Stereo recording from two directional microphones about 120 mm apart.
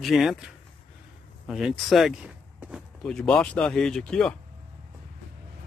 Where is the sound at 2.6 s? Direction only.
10° right (ahead or behind).